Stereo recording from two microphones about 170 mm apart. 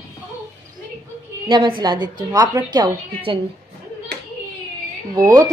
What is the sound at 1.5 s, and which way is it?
A woman's voice, 25° right (ahead or behind).